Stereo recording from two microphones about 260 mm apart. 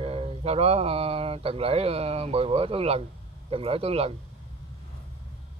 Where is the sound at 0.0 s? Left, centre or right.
Right.